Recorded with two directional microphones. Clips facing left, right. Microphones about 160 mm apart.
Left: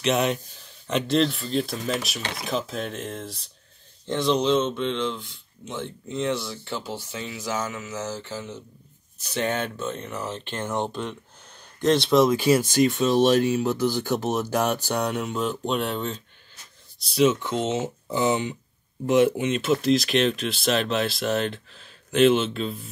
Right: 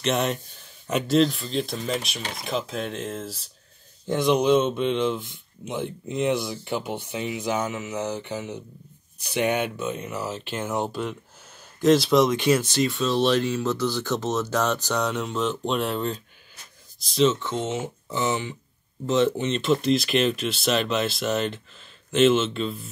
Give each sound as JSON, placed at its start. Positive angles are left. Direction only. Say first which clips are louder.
{"t": 0.0, "sound": "speech", "louder": "left 2 dB", "side_deg": 0}
{"t": 4.1, "sound": "speech", "louder": "right 2 dB", "side_deg": -15}